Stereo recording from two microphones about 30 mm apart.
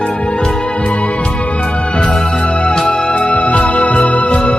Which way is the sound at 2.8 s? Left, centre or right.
Centre.